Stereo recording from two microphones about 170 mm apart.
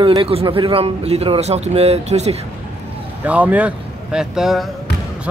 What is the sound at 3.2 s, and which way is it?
Speech, 10° right (ahead or behind).